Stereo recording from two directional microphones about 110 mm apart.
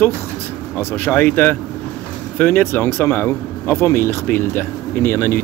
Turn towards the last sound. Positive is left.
turn(degrees=20)  # may be behind; listen again after turning